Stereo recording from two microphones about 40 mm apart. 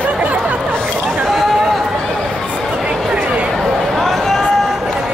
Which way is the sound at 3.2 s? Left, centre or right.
Right.